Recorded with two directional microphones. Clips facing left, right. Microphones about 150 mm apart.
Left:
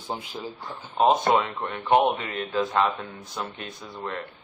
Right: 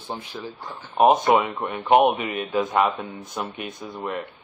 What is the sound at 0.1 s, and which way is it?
Speech, 15° left (ahead or behind).